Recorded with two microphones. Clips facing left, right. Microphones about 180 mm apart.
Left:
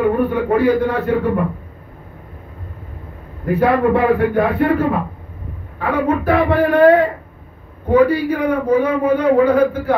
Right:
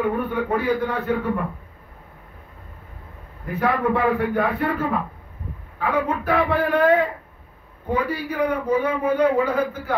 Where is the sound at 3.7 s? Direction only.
75° left (ahead or behind).